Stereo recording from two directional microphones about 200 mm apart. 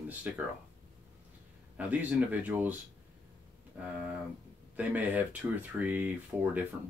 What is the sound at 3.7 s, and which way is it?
Speech, 5° right (ahead or behind).